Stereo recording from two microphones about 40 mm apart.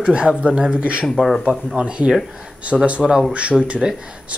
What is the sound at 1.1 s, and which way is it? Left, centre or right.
Speech, centre.